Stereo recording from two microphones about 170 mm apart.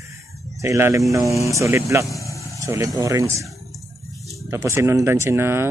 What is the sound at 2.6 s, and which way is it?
Speech, 20° right (ahead or behind).